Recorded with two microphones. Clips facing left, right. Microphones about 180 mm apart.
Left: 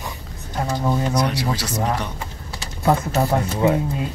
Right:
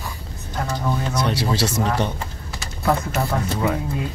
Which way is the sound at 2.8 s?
25° left (ahead or behind).